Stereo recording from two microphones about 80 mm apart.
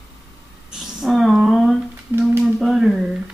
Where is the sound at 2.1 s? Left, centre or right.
Right.